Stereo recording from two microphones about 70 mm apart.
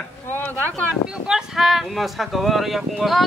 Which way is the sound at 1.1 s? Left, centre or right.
Centre.